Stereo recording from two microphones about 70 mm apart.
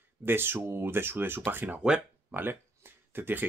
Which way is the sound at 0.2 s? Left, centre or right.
Right.